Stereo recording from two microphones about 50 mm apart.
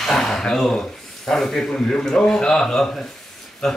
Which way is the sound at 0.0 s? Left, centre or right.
Centre.